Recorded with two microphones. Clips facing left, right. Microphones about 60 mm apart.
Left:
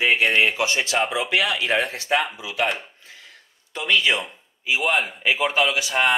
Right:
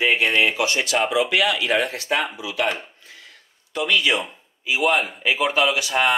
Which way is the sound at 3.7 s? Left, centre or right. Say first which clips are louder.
Even; left.